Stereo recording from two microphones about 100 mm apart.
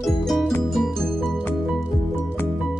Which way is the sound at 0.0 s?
Centre (ahead or behind).